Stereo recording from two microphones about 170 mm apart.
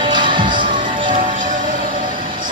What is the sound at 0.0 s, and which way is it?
Music, 30° right (ahead or behind).